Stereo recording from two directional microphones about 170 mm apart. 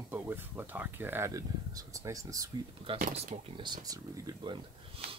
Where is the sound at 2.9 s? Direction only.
35° right (ahead or behind).